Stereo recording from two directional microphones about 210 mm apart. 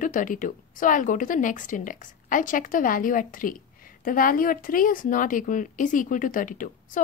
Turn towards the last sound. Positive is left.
turn(degrees=40)  # may be behind; listen again after turning